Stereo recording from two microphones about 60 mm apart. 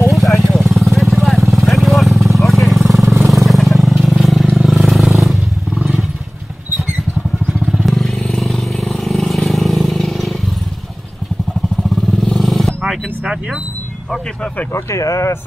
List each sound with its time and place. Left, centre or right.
0.1 s vehicle: centre
5.8 s wild animals: centre
7.7 s vehicle: centre
11.9 s vehicle: centre
14.7 s speech: left